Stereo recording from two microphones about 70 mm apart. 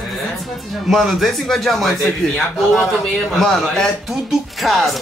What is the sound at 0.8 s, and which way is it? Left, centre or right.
Speech, centre.